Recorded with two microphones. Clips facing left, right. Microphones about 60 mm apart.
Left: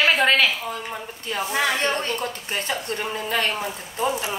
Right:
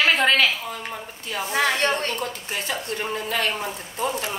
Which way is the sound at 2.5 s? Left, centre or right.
Left.